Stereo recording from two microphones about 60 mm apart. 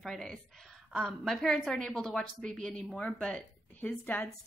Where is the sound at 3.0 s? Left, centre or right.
Centre.